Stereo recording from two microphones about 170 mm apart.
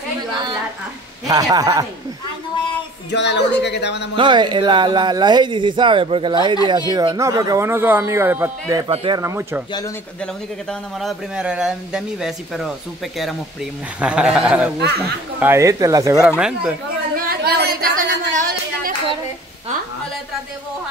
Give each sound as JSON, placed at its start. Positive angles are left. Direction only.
{"t": 1.2, "sound": "speech", "side_deg": -20}
{"t": 3.1, "sound": "speech", "side_deg": 90}
{"t": 4.2, "sound": "speech", "side_deg": -25}
{"t": 9.2, "sound": "speech", "side_deg": -15}
{"t": 11.0, "sound": "speech", "side_deg": -5}
{"t": 14.0, "sound": "speech", "side_deg": -5}
{"t": 15.4, "sound": "speech", "side_deg": -15}
{"t": 16.2, "sound": "speech", "side_deg": -5}
{"t": 17.2, "sound": "a sound", "side_deg": -65}